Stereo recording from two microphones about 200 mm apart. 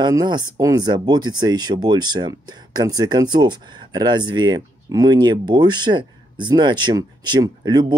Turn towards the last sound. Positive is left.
turn(degrees=-20)  # may be behind; listen again after turning